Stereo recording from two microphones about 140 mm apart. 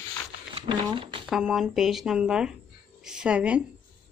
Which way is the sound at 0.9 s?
40° right (ahead or behind).